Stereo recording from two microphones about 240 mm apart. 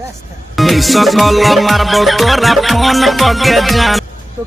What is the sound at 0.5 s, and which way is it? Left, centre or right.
Music, centre.